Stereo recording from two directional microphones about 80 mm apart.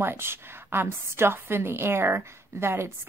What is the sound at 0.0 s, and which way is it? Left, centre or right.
A woman's voice, right.